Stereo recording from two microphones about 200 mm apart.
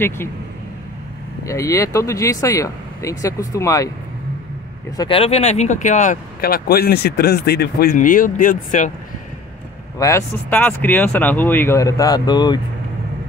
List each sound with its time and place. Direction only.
1.4 s speech: 15° left (ahead or behind)
4.9 s speech: 25° left (ahead or behind)
9.9 s speech: 15° left (ahead or behind)